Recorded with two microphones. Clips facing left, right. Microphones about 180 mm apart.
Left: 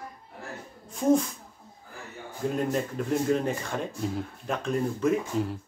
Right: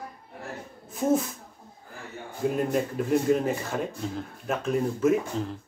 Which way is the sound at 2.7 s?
5° right (ahead or behind).